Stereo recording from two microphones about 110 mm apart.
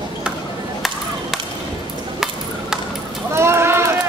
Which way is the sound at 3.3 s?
25° right (ahead or behind).